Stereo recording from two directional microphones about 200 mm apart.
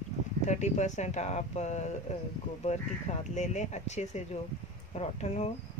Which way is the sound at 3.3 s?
35° left (ahead or behind).